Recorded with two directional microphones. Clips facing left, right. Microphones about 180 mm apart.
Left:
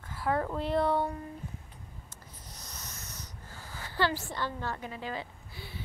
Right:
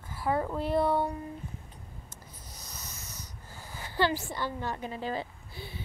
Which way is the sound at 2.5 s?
5° right (ahead or behind).